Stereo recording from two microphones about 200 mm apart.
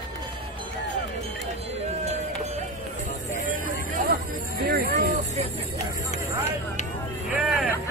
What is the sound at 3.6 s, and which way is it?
Hubbub, 40° right (ahead or behind).